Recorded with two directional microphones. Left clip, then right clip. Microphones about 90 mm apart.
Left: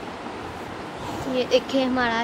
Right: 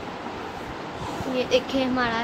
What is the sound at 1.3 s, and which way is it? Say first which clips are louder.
Speech: left 2 dB; 20° left (ahead or behind).